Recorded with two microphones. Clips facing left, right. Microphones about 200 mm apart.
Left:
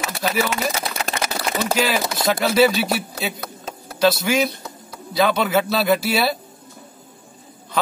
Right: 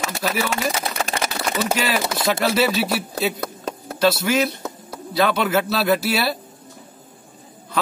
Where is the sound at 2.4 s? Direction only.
Centre (ahead or behind).